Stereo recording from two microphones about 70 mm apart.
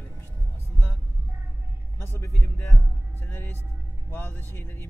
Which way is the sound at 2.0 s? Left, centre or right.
Left.